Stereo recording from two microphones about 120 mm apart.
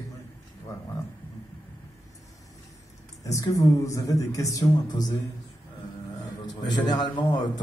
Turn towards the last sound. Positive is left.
turn(degrees=35)  # may be behind; listen again after turning